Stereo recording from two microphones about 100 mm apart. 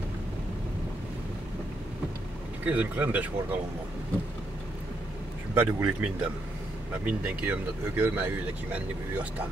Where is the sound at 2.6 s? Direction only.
15° right (ahead or behind).